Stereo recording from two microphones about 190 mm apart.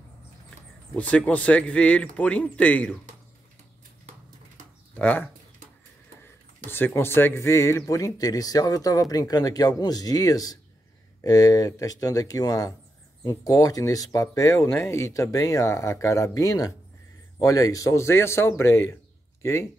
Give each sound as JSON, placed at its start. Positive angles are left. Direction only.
{"t": 0.9, "sound": "speech", "side_deg": 5}
{"t": 4.9, "sound": "speech", "side_deg": 10}
{"t": 6.2, "sound": "speech", "side_deg": 10}